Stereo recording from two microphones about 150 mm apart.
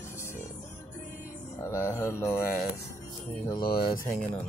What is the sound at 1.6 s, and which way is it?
Mantra, 20° left (ahead or behind).